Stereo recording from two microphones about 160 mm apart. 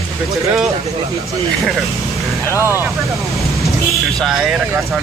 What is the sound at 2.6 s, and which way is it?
Speech, 15° right (ahead or behind).